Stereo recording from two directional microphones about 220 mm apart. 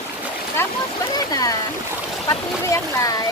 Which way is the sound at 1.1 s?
15° left (ahead or behind).